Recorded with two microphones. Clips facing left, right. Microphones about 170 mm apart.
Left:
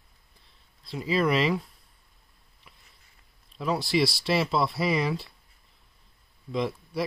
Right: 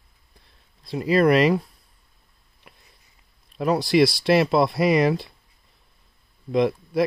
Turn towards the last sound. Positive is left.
turn(degrees=-60)  # may be behind; listen again after turning